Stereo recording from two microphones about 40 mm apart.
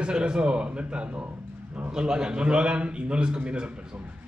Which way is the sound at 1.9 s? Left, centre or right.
Centre.